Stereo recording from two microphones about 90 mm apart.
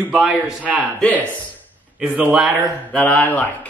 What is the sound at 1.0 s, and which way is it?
Speech, 20° left (ahead or behind).